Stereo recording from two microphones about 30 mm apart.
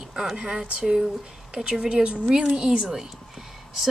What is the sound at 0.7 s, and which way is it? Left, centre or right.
A woman's voice, right.